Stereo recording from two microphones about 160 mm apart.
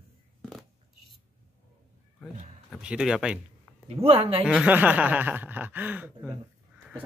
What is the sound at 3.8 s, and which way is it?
Speech, 35° right (ahead or behind).